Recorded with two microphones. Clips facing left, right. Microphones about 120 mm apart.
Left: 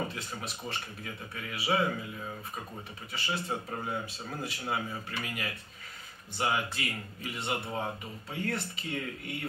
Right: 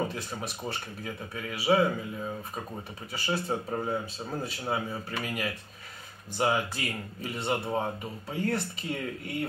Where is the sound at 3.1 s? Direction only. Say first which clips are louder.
Right 4 dB; 35° right (ahead or behind).